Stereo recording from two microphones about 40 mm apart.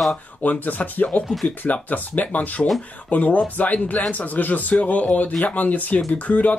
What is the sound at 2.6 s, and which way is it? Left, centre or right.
Speech, left.